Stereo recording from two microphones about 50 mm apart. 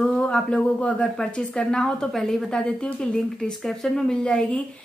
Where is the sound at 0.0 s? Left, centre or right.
Centre.